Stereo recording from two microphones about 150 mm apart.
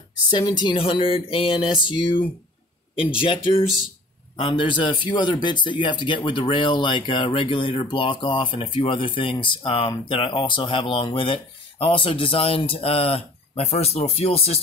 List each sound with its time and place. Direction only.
0.3 s speech: 30° left (ahead or behind)